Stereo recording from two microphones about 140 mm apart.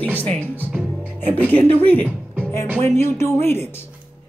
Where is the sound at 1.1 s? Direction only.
15° left (ahead or behind).